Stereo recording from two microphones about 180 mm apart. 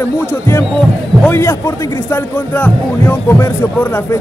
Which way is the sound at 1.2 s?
15° left (ahead or behind).